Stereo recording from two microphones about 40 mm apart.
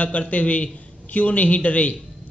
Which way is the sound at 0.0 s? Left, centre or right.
Left.